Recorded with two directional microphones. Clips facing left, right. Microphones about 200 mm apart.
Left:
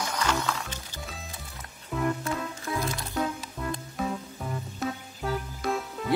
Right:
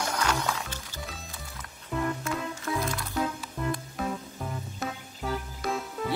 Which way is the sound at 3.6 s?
Centre (ahead or behind).